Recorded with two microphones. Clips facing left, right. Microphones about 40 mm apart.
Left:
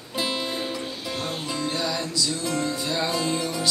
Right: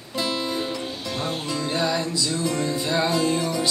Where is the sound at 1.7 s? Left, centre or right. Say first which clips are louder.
Right 3 dB; centre.